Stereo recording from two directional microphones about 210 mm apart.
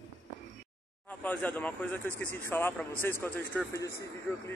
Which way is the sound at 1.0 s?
5° left (ahead or behind).